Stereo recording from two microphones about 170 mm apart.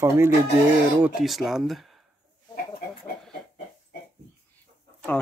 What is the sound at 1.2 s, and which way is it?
Speech, centre (ahead or behind).